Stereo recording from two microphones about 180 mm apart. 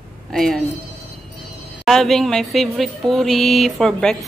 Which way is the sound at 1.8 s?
Centre (ahead or behind).